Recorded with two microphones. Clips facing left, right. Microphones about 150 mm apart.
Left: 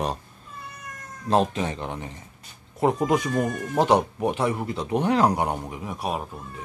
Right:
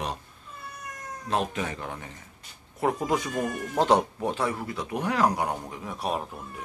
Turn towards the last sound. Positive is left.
turn(degrees=10)  # may be behind; listen again after turning